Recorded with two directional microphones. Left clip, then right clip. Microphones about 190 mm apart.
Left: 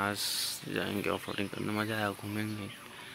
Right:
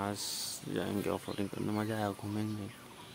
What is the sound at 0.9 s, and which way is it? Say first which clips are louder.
Speech: left 2 dB; centre (ahead or behind).